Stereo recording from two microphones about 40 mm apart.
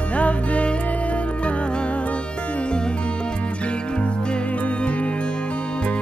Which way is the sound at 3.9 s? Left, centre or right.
Left.